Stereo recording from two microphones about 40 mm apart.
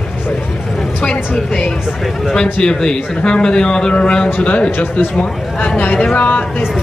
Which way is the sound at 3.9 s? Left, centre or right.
Left.